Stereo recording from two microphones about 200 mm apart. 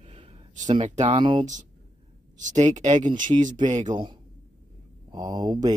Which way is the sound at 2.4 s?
35° right (ahead or behind).